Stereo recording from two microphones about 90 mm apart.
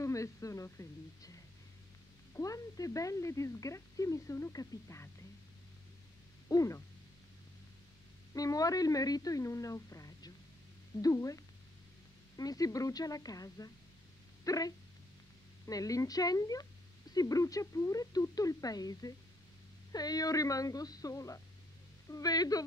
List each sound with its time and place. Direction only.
0.0 s a woman's voice: 35° left (ahead or behind)
6.5 s a woman's voice: 40° left (ahead or behind)
8.4 s a woman's voice: 40° left (ahead or behind)